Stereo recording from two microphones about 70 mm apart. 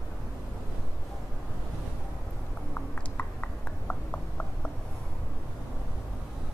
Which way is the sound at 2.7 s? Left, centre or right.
Left.